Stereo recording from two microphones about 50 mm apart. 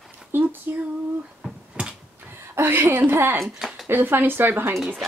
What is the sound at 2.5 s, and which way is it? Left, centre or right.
Speech, right.